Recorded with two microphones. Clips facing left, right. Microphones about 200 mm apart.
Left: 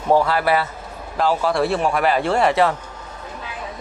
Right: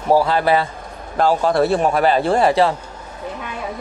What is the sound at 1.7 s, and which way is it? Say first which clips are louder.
A man's voice: right 3 dB; 30° right (ahead or behind).